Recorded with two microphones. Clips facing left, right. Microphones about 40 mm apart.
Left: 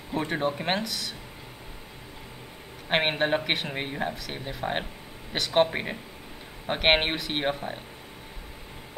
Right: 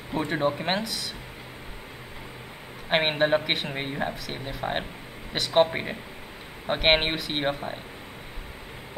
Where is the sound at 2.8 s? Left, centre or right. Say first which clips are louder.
Right 2 dB; centre.